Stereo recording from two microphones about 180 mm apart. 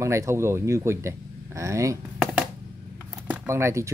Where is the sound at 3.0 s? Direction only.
10° right (ahead or behind).